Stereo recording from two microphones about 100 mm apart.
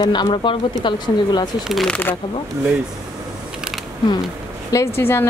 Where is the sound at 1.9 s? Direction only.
20° left (ahead or behind).